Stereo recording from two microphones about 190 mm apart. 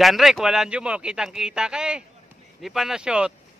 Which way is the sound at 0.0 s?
Centre (ahead or behind).